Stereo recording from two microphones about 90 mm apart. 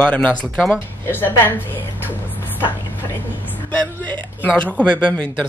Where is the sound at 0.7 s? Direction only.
25° left (ahead or behind).